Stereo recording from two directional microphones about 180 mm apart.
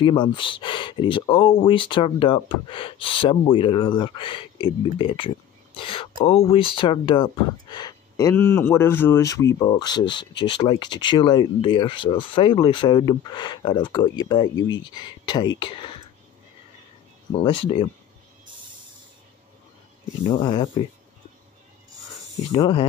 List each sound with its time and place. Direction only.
0.0 s speech: 25° left (ahead or behind)
17.4 s speech: 30° left (ahead or behind)
20.2 s speech: 25° left (ahead or behind)
22.6 s speech: 30° left (ahead or behind)